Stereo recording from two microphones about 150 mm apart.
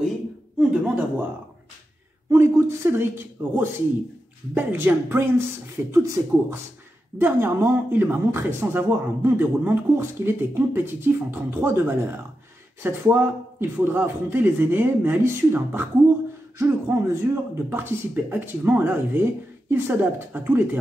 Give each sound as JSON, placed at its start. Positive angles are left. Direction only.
{"t": 0.6, "sound": "speech", "side_deg": -5}
{"t": 2.3, "sound": "speech", "side_deg": -15}